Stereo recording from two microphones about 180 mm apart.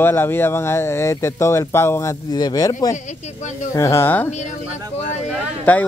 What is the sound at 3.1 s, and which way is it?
Speech, 40° left (ahead or behind).